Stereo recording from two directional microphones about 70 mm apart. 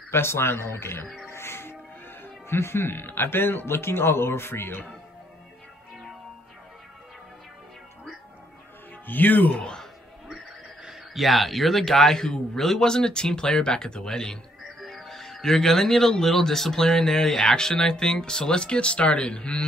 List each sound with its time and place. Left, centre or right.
0.1 s speech: left
1.3 s music: left
2.2 s speech: left
9.0 s speech: left
10.9 s a man's voice: centre